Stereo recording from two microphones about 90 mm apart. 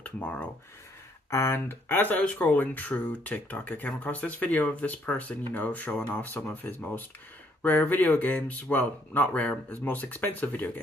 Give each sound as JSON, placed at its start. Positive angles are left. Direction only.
{"t": 0.0, "sound": "speech", "side_deg": 15}